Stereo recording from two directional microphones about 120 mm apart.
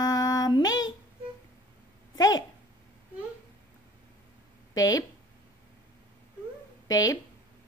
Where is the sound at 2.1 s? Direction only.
30° left (ahead or behind).